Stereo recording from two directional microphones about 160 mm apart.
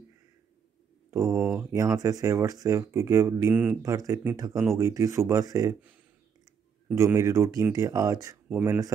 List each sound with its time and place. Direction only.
1.1 s speech: 15° right (ahead or behind)
7.0 s speech: 20° right (ahead or behind)
8.5 s speech: 10° right (ahead or behind)